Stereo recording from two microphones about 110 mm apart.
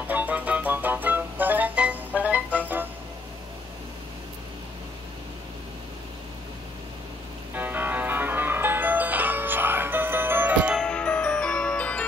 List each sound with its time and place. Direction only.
0.0 s music: 15° right (ahead or behind)
7.5 s music: 20° right (ahead or behind)
10.8 s music: 5° left (ahead or behind)